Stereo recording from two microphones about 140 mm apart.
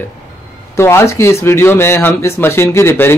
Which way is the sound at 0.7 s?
20° left (ahead or behind).